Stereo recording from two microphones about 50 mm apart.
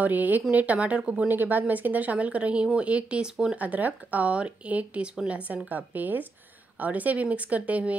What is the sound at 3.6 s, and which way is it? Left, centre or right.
Speech, right.